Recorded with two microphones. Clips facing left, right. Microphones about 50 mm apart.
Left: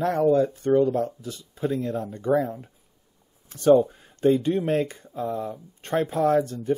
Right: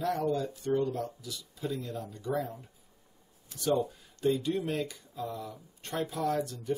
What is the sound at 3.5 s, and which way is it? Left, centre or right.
Speech, left.